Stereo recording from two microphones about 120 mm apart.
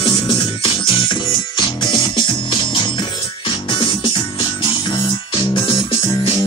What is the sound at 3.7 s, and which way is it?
Music, 45° left (ahead or behind).